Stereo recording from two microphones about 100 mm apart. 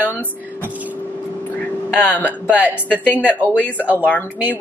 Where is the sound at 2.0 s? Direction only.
15° left (ahead or behind).